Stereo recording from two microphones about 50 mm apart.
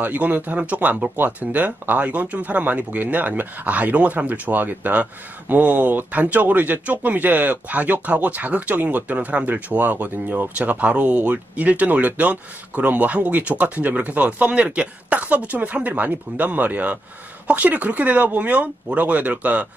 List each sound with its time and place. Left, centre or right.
0.0 s a man's voice: right